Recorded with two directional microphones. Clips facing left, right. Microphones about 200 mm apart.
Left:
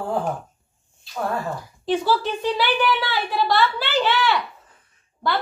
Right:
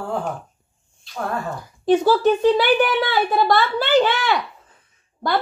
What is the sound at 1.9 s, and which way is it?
A woman's voice, 45° right (ahead or behind).